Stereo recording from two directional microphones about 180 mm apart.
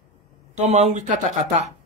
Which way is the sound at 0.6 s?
35° right (ahead or behind).